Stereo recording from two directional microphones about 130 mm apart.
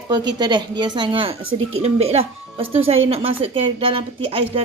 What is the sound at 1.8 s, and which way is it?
A woman's voice, 50° right (ahead or behind).